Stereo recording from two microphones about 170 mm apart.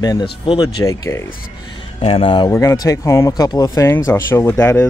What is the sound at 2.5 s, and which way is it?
Speech, 15° left (ahead or behind).